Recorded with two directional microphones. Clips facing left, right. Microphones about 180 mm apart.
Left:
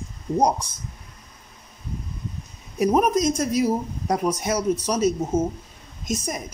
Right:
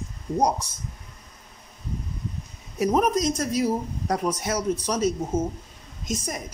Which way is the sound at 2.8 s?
10° left (ahead or behind).